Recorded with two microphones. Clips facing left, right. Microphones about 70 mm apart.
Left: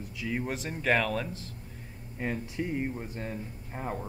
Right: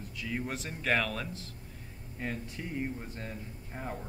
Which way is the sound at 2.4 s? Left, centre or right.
Centre.